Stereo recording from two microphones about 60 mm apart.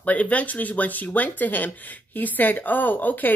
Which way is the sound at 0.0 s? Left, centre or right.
Left.